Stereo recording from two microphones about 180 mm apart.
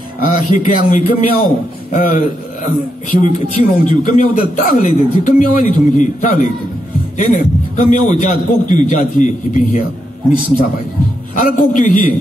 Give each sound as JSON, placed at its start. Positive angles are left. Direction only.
{"t": 0.3, "sound": "a man's voice", "side_deg": 45}
{"t": 11.3, "sound": "a man's voice", "side_deg": 45}